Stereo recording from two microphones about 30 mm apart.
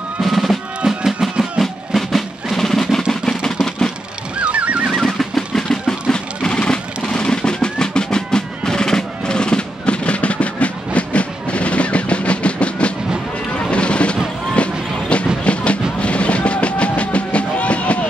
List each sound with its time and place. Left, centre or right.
0.2 s drum: centre
0.8 s music: right
1.4 s music: centre
3.1 s drum: centre
4.4 s music: right
4.9 s music: centre
6.1 s music: left